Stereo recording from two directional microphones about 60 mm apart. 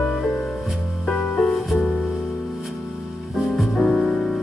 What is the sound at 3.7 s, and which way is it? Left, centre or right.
Music, left.